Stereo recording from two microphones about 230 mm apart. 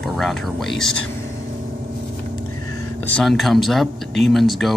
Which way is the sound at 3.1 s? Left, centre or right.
Centre.